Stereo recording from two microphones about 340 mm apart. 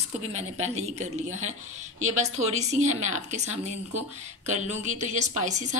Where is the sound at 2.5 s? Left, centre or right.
Centre.